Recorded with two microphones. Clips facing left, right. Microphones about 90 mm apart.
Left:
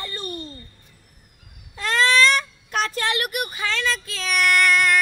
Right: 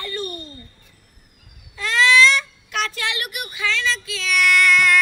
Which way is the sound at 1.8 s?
45° left (ahead or behind).